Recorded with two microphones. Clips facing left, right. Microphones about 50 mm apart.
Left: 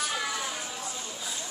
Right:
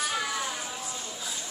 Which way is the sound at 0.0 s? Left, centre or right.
Centre.